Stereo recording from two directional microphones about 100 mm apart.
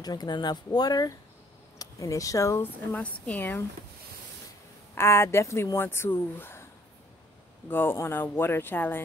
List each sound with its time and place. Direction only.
0.0 s speech: 40° left (ahead or behind)
2.9 s a woman's voice: 15° left (ahead or behind)
4.9 s speech: 25° left (ahead or behind)
7.7 s speech: 20° left (ahead or behind)